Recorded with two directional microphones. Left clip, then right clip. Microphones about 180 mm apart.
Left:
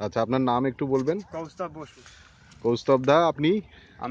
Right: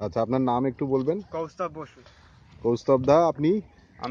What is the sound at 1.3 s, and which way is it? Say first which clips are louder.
Speech: right 3 dB; 5° right (ahead or behind).